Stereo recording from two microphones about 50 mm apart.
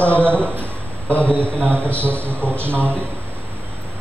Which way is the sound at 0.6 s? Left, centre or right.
Left.